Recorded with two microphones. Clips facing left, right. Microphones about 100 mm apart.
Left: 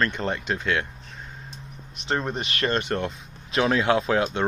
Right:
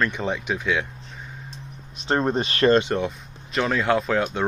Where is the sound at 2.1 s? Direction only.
30° right (ahead or behind).